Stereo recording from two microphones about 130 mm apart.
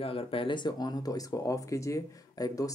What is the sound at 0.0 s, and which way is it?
Speech, 45° left (ahead or behind).